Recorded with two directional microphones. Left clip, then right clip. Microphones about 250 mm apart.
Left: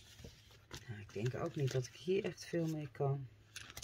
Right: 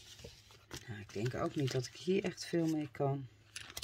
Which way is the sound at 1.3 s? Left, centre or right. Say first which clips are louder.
Right 4 dB; right.